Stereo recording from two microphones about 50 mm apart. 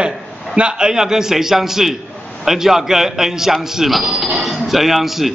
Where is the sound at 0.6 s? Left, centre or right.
Centre.